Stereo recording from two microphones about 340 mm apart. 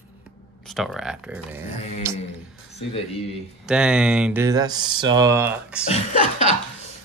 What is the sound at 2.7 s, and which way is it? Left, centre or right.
Speech, centre.